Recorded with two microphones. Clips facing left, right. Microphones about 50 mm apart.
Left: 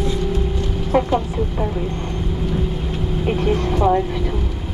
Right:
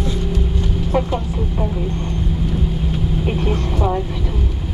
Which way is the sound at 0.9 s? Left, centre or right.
Centre.